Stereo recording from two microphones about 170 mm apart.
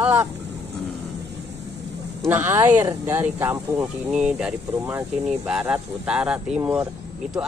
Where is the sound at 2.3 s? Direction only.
15° right (ahead or behind).